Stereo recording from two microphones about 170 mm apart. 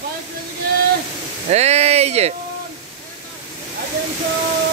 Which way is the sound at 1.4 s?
40° right (ahead or behind).